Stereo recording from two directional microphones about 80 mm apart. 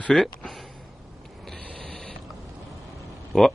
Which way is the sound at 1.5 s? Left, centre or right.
Centre.